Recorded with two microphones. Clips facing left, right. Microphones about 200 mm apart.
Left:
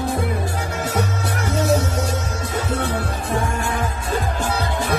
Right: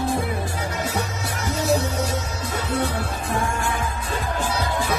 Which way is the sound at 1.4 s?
55° left (ahead or behind).